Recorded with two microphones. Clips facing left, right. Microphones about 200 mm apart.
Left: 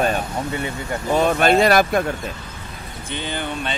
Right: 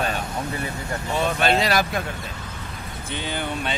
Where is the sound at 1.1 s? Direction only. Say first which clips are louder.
Left 5 dB; 50° left (ahead or behind).